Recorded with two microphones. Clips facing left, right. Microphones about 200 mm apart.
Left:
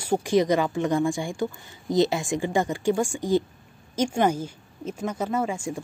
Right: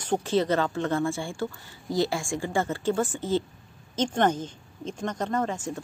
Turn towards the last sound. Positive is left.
turn(degrees=10)  # may be behind; listen again after turning